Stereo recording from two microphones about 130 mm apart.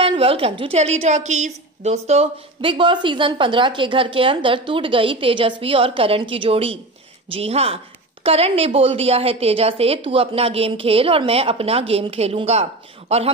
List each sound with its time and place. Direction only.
0.0 s a woman's voice: 50° right (ahead or behind)
2.6 s a woman's voice: 40° right (ahead or behind)